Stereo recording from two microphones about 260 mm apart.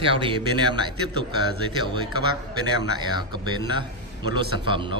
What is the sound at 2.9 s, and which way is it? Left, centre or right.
Speech, centre.